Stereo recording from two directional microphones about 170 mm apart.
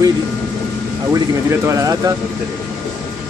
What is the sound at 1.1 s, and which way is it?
Speech, 15° right (ahead or behind).